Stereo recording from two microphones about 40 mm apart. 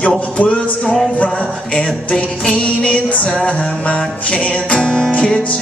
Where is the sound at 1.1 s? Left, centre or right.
Left.